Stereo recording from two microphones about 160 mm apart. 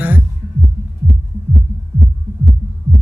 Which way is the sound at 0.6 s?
60° right (ahead or behind).